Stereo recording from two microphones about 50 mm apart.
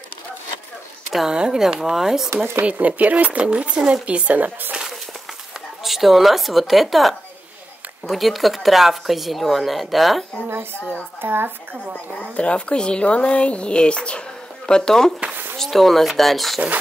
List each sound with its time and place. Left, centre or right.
1.3 s speech: centre
2.3 s speech: right
2.6 s speech: right
5.9 s speech: centre
10.5 s speech: right
12.2 s speech: left; by 16.6 s centre